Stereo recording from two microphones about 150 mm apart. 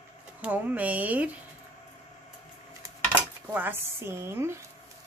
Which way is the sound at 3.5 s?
15° right (ahead or behind).